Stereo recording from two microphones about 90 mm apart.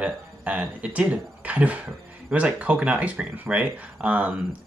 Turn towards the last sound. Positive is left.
turn(degrees=-15)  # may be behind; listen again after turning